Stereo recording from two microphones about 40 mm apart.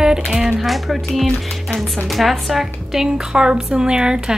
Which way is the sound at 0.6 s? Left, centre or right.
Centre.